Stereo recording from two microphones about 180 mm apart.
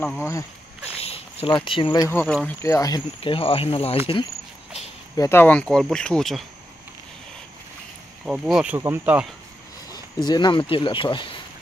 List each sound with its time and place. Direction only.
0.9 s speech: 35° left (ahead or behind)
2.1 s speech: 5° left (ahead or behind)
2.6 s speech: 20° left (ahead or behind)
3.2 s speech: 30° left (ahead or behind)
5.1 s speech: 15° left (ahead or behind)
8.3 s speech: 5° right (ahead or behind)
9.8 s speech: 25° left (ahead or behind)